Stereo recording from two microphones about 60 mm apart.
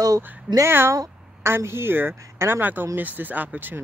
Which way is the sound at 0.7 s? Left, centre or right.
Right.